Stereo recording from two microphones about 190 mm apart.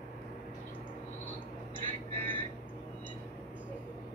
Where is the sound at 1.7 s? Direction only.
25° right (ahead or behind).